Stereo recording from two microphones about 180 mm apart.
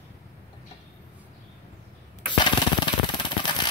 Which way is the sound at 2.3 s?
25° left (ahead or behind).